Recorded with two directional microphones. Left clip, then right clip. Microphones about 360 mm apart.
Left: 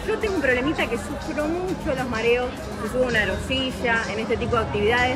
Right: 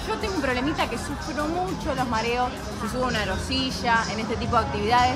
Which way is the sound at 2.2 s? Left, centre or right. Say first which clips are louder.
Left 3 dB; centre.